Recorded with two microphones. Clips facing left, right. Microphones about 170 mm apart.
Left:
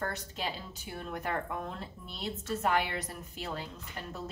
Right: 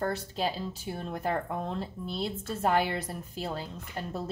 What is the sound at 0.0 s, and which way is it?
A woman's voice, 30° right (ahead or behind).